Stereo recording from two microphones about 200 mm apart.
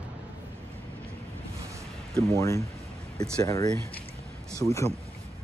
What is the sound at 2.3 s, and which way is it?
Speech, 15° left (ahead or behind).